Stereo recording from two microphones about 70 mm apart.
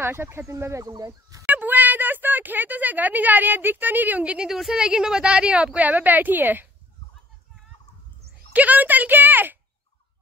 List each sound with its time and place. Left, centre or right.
0.0 s speech: right
1.4 s speech: right
4.5 s a woman's voice: centre; by 6.7 s right
8.5 s a sound: right